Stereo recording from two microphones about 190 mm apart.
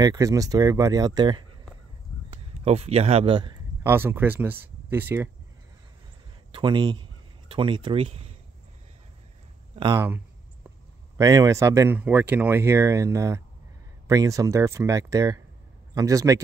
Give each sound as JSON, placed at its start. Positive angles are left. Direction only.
{"t": 0.0, "sound": "speech", "side_deg": -20}
{"t": 2.3, "sound": "speech", "side_deg": -30}
{"t": 3.8, "sound": "speech", "side_deg": -10}
{"t": 6.5, "sound": "a sound", "side_deg": -25}
{"t": 9.8, "sound": "speech", "side_deg": -20}
{"t": 11.1, "sound": "a man's voice", "side_deg": -20}